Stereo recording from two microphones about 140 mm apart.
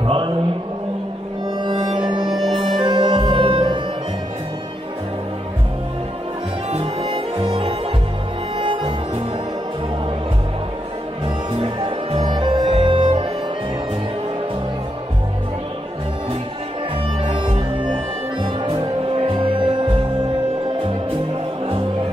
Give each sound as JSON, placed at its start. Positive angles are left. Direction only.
{"t": 0.0, "sound": "a sound", "side_deg": -40}
{"t": 1.6, "sound": "music", "side_deg": -30}
{"t": 6.7, "sound": "music", "side_deg": -40}
{"t": 11.5, "sound": "music", "side_deg": -35}
{"t": 17.2, "sound": "music", "side_deg": -35}